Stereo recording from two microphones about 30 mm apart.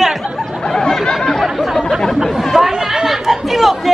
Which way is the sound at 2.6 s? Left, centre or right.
Centre.